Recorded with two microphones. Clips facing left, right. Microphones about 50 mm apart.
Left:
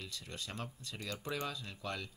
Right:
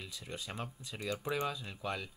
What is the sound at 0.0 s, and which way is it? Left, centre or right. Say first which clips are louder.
Speech: right 2 dB; centre.